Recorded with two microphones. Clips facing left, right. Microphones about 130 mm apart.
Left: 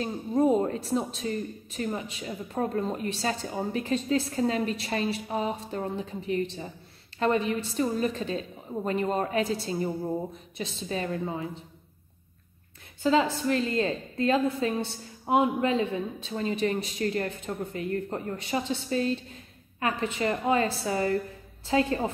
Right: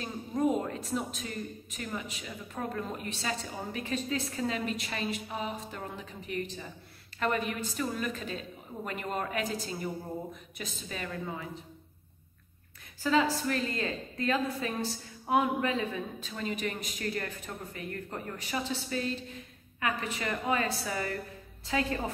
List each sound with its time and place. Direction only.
0.0 s a woman's voice: 30° left (ahead or behind)
13.0 s a woman's voice: 30° left (ahead or behind)